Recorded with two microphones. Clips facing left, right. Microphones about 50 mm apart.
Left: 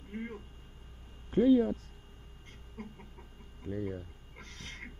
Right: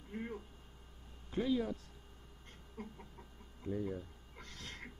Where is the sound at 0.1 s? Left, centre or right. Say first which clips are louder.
Left 3 dB; left.